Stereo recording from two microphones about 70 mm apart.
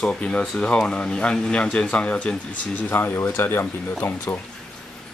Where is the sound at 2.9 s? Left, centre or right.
Left.